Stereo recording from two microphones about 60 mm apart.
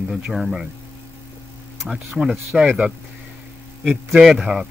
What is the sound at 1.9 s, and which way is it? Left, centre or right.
Speech, centre.